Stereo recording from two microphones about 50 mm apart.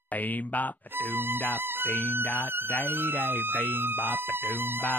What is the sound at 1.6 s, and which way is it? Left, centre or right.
Music, right.